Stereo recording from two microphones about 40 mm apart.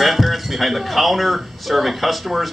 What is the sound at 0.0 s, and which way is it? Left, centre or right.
Speech, centre.